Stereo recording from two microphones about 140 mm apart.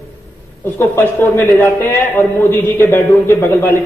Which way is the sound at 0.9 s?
15° left (ahead or behind).